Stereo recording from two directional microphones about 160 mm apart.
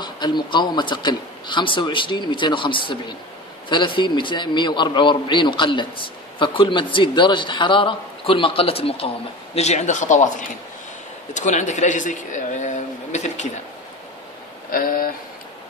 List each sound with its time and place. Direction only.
0.0 s a man's voice: 30° left (ahead or behind); by 10.2 s 50° left (ahead or behind)
11.3 s speech: 50° left (ahead or behind)
14.7 s speech: 60° left (ahead or behind)